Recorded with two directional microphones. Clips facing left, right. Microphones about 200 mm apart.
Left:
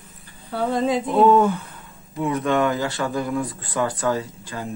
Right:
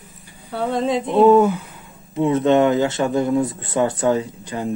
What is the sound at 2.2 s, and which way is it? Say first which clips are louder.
Speech: right 6 dB; 25° right (ahead or behind).